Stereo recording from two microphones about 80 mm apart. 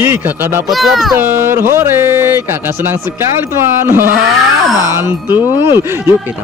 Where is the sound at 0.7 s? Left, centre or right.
Centre.